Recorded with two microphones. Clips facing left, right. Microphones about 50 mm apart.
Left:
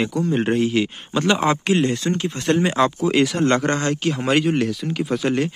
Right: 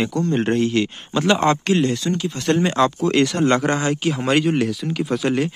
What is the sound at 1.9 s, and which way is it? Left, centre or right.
Speech, left.